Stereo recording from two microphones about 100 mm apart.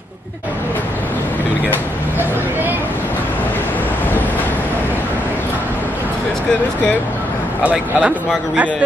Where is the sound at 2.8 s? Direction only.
20° left (ahead or behind).